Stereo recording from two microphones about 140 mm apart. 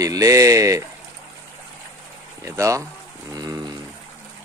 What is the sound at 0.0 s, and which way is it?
Mantra, 25° right (ahead or behind).